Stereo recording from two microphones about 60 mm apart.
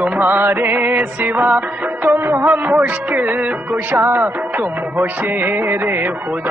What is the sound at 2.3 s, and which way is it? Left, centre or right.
Music, right.